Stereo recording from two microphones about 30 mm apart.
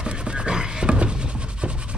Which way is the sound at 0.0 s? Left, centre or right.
Right.